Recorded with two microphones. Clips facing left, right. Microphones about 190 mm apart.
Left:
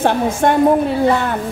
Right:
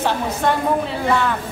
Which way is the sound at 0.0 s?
50° left (ahead or behind).